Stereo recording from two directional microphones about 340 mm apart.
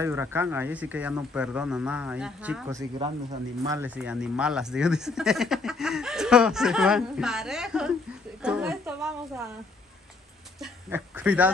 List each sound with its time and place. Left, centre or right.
0.0 s speech: centre
8.4 s a sound: centre
10.6 s speech: centre